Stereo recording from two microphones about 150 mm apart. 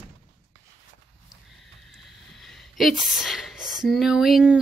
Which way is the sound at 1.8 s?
Centre (ahead or behind).